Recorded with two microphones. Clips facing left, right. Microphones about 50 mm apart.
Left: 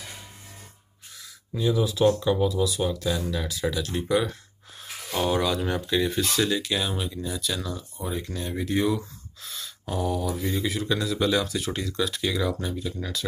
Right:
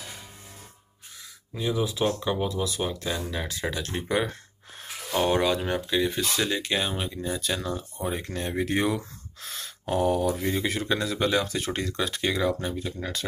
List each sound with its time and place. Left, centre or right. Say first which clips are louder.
1.5 s speech: left 3 dB; right
8.5 s speech: left 1 dB; right
9.4 s speech: even; right
11.4 s speech: even; right